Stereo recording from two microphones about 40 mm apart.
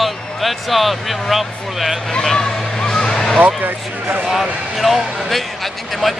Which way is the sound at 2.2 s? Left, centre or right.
Centre.